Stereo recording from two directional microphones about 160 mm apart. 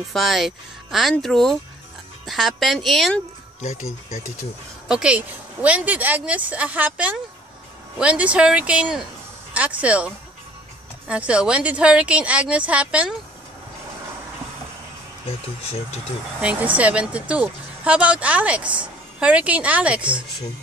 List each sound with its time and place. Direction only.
0.1 s speech: centre (ahead or behind)
4.8 s speech: 5° right (ahead or behind)
15.2 s speech: 40° left (ahead or behind)
16.3 s speech: 10° right (ahead or behind)